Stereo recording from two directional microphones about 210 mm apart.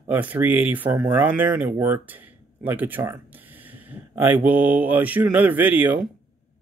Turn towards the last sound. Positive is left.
turn(degrees=-10)  # may be behind; listen again after turning